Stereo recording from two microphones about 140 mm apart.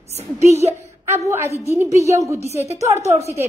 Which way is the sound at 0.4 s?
50° left (ahead or behind).